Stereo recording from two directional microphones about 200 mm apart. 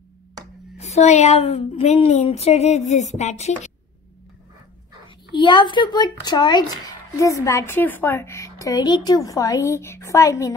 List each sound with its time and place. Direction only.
0.7 s a woman's voice: 35° left (ahead or behind)
5.3 s speech: 25° left (ahead or behind)